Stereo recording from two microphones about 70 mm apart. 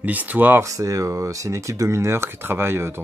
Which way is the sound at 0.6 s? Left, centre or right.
Right.